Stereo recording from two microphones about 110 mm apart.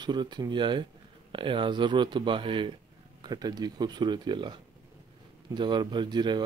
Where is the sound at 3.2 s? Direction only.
35° right (ahead or behind).